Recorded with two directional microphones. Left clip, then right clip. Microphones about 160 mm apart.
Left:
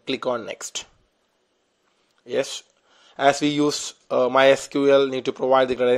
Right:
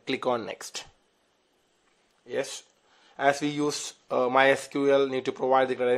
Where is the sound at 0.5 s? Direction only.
20° left (ahead or behind).